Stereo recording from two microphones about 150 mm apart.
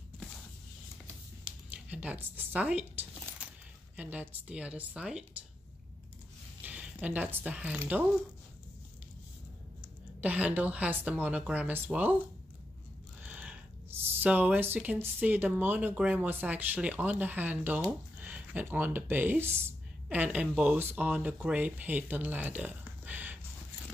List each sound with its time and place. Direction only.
1.7 s speech: 10° right (ahead or behind)
6.6 s speech: 10° right (ahead or behind)
10.2 s speech: 10° right (ahead or behind)
13.2 s speech: 10° right (ahead or behind)